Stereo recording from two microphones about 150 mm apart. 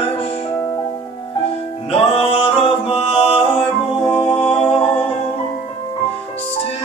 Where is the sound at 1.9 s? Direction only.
40° left (ahead or behind).